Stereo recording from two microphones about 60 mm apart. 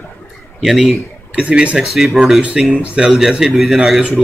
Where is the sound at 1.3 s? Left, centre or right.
Centre.